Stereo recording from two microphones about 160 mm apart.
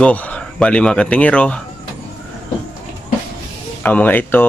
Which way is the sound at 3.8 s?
10° left (ahead or behind).